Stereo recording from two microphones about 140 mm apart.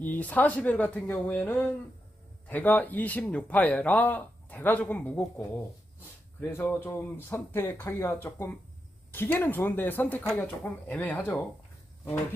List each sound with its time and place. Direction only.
0.0 s speech: 10° left (ahead or behind)
6.4 s speech: 15° left (ahead or behind)